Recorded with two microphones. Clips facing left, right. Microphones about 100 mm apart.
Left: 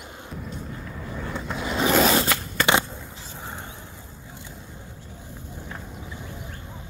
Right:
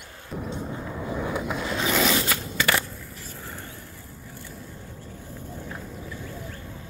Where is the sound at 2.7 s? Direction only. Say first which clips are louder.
Left 6 dB; 20° left (ahead or behind).